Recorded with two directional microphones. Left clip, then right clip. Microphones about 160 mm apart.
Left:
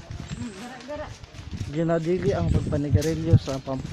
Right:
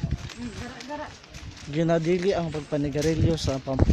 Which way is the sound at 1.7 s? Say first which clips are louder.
Right 1 dB; 20° right (ahead or behind).